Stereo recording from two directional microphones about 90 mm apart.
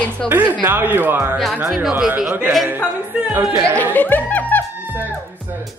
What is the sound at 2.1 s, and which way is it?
Speech, 10° right (ahead or behind).